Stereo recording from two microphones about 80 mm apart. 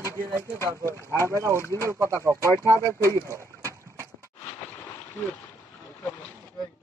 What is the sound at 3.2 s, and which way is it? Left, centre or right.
Boat, right.